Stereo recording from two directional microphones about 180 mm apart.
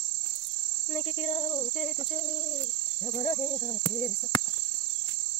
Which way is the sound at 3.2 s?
30° left (ahead or behind).